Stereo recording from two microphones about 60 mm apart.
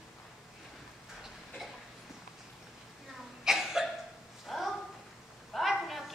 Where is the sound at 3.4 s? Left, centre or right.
Centre.